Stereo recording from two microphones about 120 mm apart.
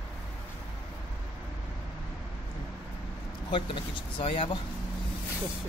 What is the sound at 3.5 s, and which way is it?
Speech, 45° left (ahead or behind).